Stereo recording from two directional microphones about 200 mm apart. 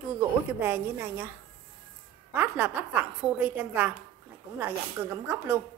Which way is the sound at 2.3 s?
10° right (ahead or behind).